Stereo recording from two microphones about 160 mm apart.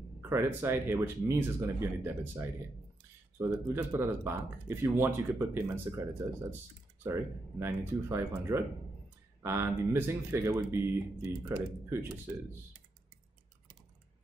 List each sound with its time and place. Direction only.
0.2 s speech: 15° right (ahead or behind)
7.1 s speech: 15° right (ahead or behind)